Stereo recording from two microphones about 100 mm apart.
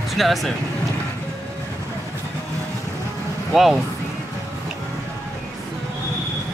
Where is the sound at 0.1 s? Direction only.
Centre (ahead or behind).